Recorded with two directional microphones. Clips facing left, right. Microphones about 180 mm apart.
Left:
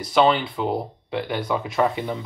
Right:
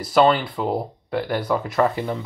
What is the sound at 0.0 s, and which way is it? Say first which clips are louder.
Speech: right 2 dB; centre (ahead or behind).